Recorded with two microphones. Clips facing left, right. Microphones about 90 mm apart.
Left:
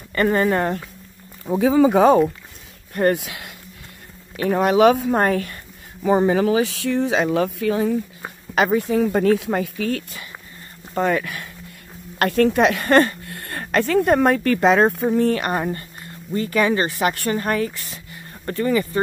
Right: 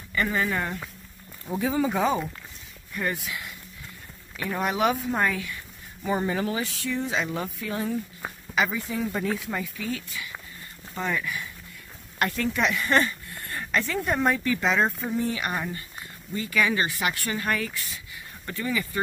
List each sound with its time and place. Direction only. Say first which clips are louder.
0.1 s a woman's voice: left 8 dB; 55° left (ahead or behind)
1.6 s speech: left 10 dB; 90° left
4.4 s speech: left 10 dB; 75° left (ahead or behind)
5.1 s a woman's voice: left 7 dB; 50° left (ahead or behind)
6.0 s speech: left 10 dB; 90° left
8.6 s speech: left 11 dB; 60° left (ahead or behind)
11.0 s speech: left 8 dB; 55° left (ahead or behind)
12.2 s speech: left 9 dB; 75° left (ahead or behind)
15.5 s speech: left 8 dB; 40° left (ahead or behind)